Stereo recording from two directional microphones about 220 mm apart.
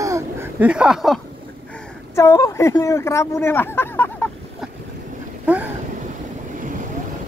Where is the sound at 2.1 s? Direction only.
15° left (ahead or behind).